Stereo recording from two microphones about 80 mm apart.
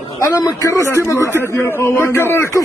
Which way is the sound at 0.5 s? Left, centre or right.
Left.